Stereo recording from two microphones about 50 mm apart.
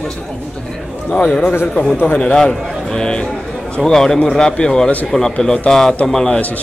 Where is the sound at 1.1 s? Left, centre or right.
Centre.